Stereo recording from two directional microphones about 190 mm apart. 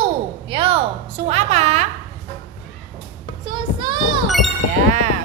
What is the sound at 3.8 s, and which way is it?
Music, 25° right (ahead or behind).